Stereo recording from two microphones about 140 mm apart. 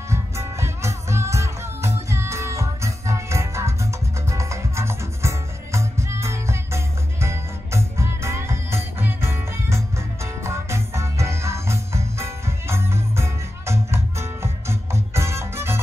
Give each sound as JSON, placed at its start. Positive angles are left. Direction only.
{"t": 0.1, "sound": "music", "side_deg": -20}